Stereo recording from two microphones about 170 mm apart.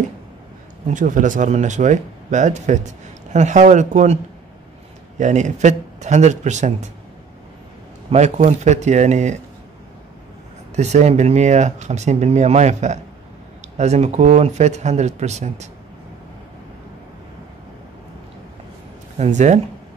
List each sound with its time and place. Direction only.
0.8 s speech: 50° right (ahead or behind)
5.2 s speech: 45° right (ahead or behind)
8.1 s speech: 40° right (ahead or behind)
10.8 s speech: 40° right (ahead or behind)
19.1 s speech: 45° right (ahead or behind)